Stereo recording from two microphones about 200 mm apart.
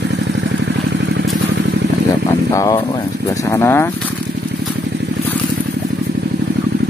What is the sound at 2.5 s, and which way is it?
Speech, 15° left (ahead or behind).